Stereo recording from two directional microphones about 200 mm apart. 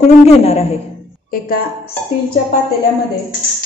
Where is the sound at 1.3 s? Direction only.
45° left (ahead or behind).